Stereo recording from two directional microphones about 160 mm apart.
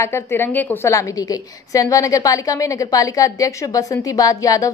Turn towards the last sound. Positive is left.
turn(degrees=20)  # may be behind; listen again after turning